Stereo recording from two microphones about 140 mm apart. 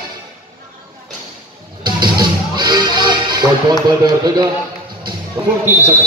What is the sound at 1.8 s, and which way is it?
Music, 30° right (ahead or behind).